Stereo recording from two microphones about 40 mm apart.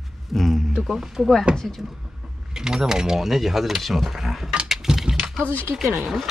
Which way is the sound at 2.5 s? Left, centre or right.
Centre.